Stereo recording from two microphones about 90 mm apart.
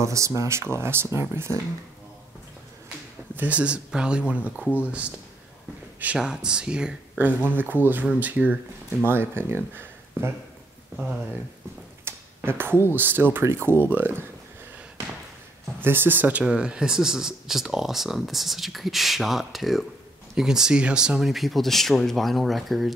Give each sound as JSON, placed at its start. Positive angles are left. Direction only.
{"t": 0.0, "sound": "speech", "side_deg": -35}
{"t": 3.3, "sound": "speech", "side_deg": -15}
{"t": 6.1, "sound": "speech", "side_deg": -5}
{"t": 7.4, "sound": "speech", "side_deg": -20}
{"t": 12.0, "sound": "a sound", "side_deg": -25}
{"t": 12.9, "sound": "speech", "side_deg": -20}
{"t": 15.8, "sound": "speech", "side_deg": -25}